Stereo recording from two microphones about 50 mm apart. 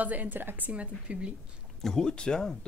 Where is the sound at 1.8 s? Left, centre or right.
Centre.